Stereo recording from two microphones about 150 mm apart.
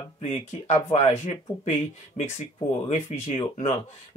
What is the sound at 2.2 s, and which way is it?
Speech, 50° left (ahead or behind).